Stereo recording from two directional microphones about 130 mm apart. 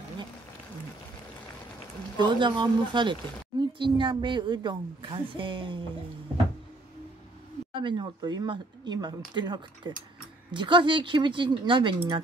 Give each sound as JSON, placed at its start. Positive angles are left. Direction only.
{"t": 2.1, "sound": "speech", "side_deg": -35}
{"t": 7.7, "sound": "speech", "side_deg": -40}